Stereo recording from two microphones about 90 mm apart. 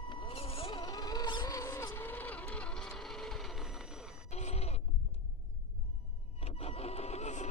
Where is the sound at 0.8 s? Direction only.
45° left (ahead or behind).